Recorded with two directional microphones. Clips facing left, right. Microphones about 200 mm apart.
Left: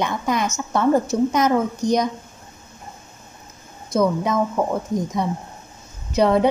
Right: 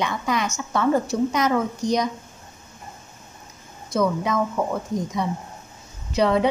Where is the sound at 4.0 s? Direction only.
45° left (ahead or behind).